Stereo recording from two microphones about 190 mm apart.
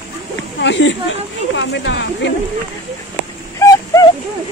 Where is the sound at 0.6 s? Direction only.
70° left (ahead or behind).